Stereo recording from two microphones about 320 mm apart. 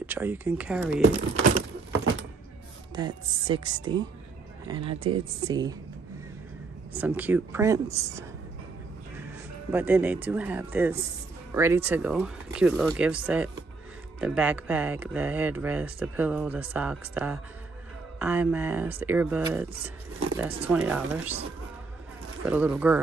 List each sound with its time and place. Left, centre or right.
0.0 s speech: centre
3.0 s speech: centre
6.9 s speech: centre
9.7 s speech: centre
19.8 s speech: right
20.3 s speech: centre
22.5 s speech: centre